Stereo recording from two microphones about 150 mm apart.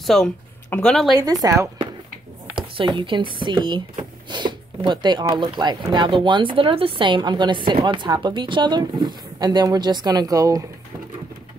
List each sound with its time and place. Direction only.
0.0 s speech: centre (ahead or behind)
1.4 s speech: 20° right (ahead or behind)
2.5 s speech: 30° right (ahead or behind)